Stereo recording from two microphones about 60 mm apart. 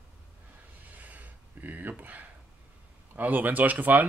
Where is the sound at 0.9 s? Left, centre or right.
Right.